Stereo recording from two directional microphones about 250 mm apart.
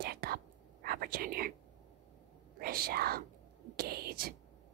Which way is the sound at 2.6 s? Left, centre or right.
Right.